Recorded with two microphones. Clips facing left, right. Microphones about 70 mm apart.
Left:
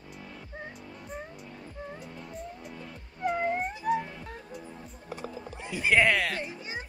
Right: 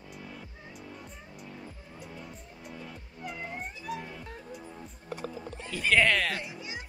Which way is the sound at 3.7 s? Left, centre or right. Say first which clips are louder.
Left 10 dB; left.